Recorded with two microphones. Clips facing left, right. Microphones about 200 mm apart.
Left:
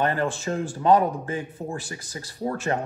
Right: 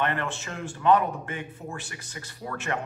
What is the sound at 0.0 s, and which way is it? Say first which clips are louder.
Speech: left 5 dB; 35° left (ahead or behind).